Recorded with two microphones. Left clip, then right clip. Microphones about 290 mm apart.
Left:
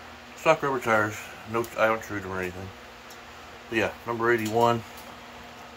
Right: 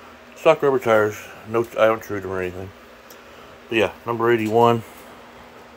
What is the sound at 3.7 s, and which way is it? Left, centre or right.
Speech, right.